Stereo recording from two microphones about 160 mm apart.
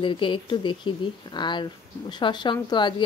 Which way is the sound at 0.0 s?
30° left (ahead or behind).